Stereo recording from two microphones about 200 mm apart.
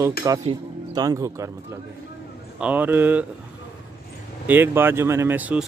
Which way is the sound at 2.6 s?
10° right (ahead or behind).